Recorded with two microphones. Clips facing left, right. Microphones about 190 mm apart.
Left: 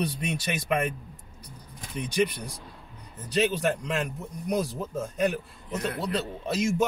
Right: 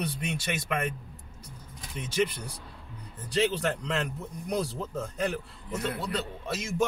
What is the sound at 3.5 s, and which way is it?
A man's voice, 15° left (ahead or behind).